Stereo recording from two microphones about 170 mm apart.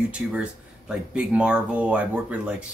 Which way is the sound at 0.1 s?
5° right (ahead or behind).